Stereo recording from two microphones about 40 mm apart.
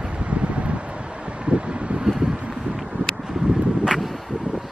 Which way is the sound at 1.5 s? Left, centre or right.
Right.